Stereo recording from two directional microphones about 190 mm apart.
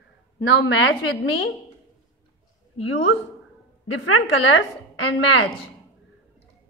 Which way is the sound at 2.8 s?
90° left.